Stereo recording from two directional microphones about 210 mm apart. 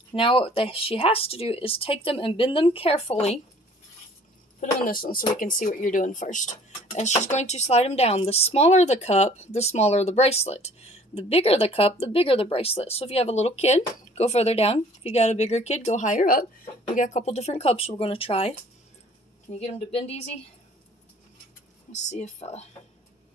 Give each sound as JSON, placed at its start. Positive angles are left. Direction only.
{"t": 0.1, "sound": "speech", "side_deg": 25}
{"t": 4.6, "sound": "speech", "side_deg": 40}
{"t": 19.6, "sound": "speech", "side_deg": 30}
{"t": 21.9, "sound": "speech", "side_deg": 35}